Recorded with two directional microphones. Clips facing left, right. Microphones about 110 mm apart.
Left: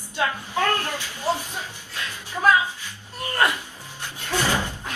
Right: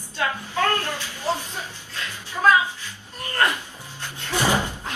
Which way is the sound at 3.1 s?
15° left (ahead or behind).